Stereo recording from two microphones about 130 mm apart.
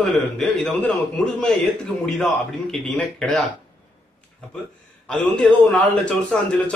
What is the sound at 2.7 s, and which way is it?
Speech, 5° left (ahead or behind).